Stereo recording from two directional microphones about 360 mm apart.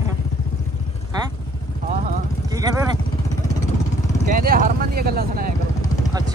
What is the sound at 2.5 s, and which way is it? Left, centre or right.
Speech, centre.